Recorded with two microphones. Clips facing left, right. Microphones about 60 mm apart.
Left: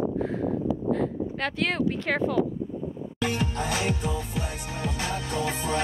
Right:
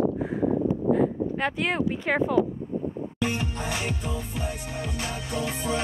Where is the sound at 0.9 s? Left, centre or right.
Centre.